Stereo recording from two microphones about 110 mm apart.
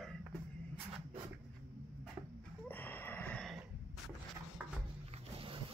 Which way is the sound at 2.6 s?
15° left (ahead or behind).